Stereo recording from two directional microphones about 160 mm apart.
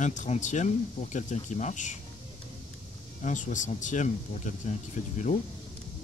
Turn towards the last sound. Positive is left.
turn(degrees=50)  # may be behind; listen again after turning